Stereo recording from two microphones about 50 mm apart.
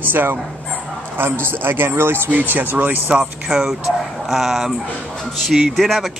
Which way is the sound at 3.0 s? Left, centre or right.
Centre.